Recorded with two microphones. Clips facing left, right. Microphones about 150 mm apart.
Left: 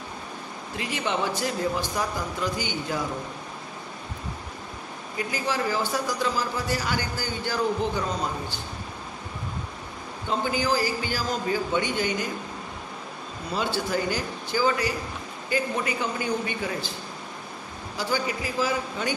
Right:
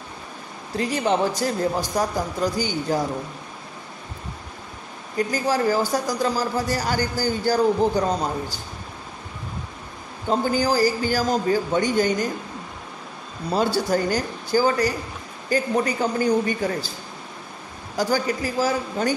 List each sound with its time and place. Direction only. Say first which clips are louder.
0.7 s a man's voice: right 7 dB; 40° right (ahead or behind)
5.1 s a man's voice: right 6 dB; 40° right (ahead or behind)
10.4 s a man's voice: right 5 dB; 40° right (ahead or behind)
13.5 s a man's voice: right 6 dB; 40° right (ahead or behind)
17.9 s a man's voice: right 5 dB; 45° right (ahead or behind)